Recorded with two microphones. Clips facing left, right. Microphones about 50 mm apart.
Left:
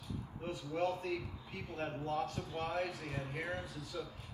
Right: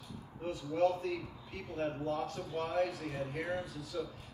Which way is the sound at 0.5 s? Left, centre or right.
Centre.